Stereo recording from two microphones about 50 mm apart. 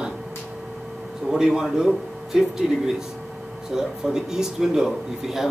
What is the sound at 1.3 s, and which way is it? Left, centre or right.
Speech, centre.